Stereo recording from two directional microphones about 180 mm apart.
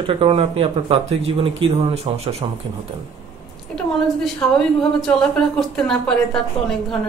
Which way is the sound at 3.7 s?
5° left (ahead or behind).